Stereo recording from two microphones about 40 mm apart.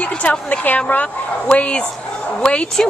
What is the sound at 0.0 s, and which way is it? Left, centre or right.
A woman's voice, left.